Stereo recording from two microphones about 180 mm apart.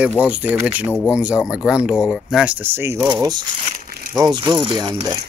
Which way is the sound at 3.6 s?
50° right (ahead or behind).